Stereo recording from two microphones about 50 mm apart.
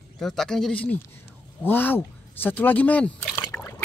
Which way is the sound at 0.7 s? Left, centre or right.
Left.